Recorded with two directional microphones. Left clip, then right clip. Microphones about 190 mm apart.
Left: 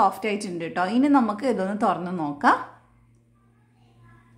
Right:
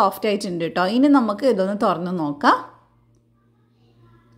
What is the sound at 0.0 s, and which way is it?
A woman's voice, 25° right (ahead or behind).